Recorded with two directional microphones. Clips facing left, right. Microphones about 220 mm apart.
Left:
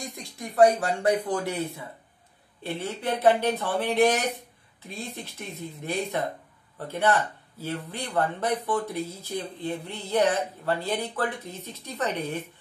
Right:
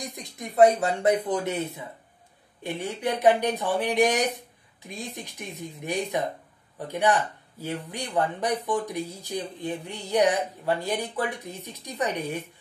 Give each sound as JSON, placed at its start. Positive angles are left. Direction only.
{"t": 0.0, "sound": "speech", "side_deg": -20}